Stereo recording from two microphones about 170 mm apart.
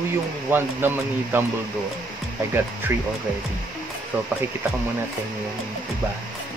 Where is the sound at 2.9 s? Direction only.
15° right (ahead or behind).